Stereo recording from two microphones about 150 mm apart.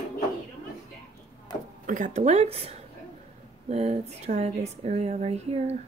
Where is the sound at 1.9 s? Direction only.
55° right (ahead or behind).